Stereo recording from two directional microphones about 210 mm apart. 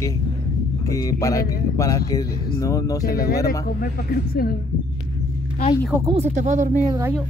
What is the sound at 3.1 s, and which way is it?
Speech, 45° left (ahead or behind).